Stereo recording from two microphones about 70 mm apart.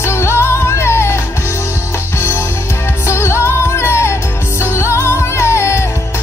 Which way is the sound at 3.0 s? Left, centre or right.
Left.